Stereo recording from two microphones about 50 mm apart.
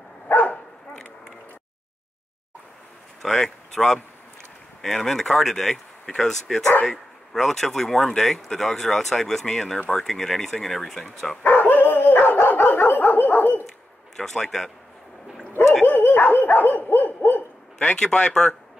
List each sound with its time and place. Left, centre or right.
0.3 s bow-wow: left
3.2 s speech: centre
11.4 s dog: left
14.1 s speech: centre
15.8 s dog: left
17.7 s speech: centre